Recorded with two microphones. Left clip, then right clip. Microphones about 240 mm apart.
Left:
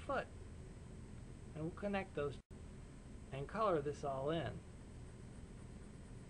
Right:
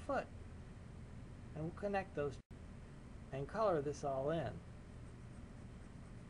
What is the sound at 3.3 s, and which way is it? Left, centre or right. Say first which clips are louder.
Speech: right 1 dB; centre.